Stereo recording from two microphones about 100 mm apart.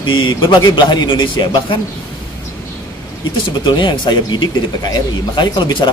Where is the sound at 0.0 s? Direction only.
50° left (ahead or behind).